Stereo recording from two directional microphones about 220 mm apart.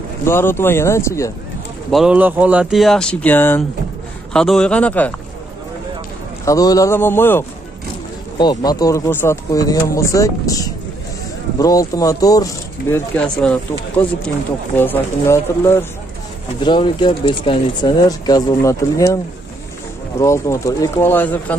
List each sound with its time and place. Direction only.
0.2 s speech: 10° left (ahead or behind)
1.9 s speech: 5° right (ahead or behind)
6.4 s speech: 15° left (ahead or behind)
20.2 s speech: 10° left (ahead or behind)